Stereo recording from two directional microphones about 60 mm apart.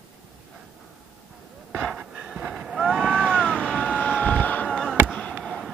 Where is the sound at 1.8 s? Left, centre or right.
Centre.